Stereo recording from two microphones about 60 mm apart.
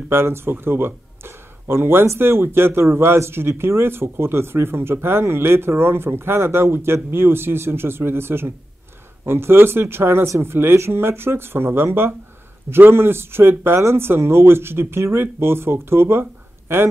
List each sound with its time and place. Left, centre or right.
0.1 s speech: right